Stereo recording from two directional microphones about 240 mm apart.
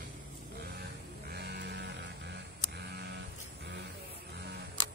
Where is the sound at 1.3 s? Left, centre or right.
Right.